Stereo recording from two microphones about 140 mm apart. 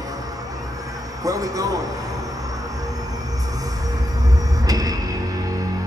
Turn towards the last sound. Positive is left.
turn(degrees=-25)  # may be behind; listen again after turning